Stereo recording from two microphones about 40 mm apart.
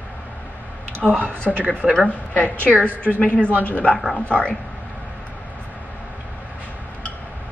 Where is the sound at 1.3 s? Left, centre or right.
Right.